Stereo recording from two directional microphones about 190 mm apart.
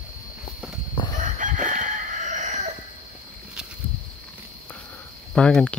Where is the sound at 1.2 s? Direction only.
40° right (ahead or behind).